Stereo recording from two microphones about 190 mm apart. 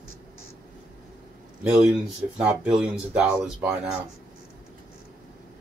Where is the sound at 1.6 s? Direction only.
5° right (ahead or behind).